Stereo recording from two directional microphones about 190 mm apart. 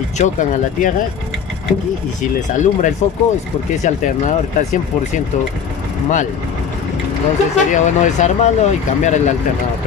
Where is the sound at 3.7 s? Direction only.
40° left (ahead or behind).